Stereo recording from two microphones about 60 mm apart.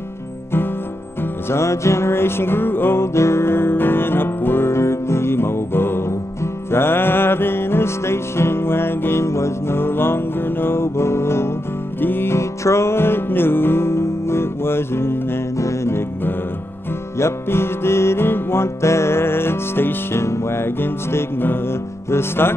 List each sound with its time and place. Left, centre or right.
1.5 s music: left
12.4 s music: left
15.5 s music: left
17.2 s music: left